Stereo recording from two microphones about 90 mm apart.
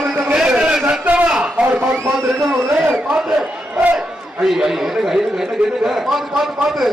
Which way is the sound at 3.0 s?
10° right (ahead or behind).